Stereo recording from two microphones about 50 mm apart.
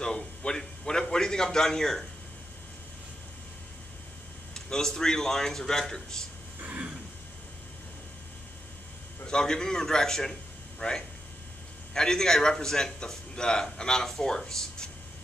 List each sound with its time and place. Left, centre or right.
0.0 s a man's voice: centre
4.6 s a man's voice: centre
6.6 s a sound: right
9.2 s a man's voice: centre